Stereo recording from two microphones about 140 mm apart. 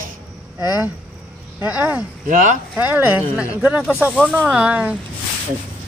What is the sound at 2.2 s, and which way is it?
Speech, 70° right (ahead or behind).